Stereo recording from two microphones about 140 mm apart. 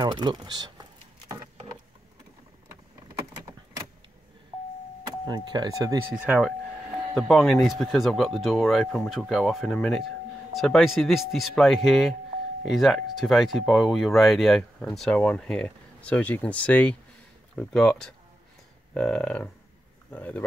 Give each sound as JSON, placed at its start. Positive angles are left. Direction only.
{"t": 0.0, "sound": "speech", "side_deg": -30}
{"t": 5.2, "sound": "speech", "side_deg": -30}
{"t": 6.1, "sound": "speech", "side_deg": -10}
{"t": 7.2, "sound": "speech", "side_deg": 5}